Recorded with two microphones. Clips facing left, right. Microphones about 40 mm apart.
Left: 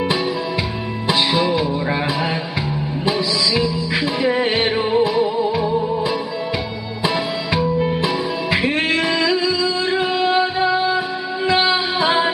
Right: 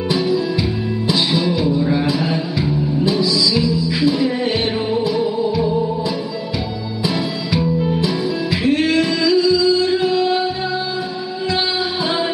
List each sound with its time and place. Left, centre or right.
1.3 s music: left
3.1 s music: left
5.1 s music: centre
7.5 s music: left
8.6 s singing: left
11.4 s music: left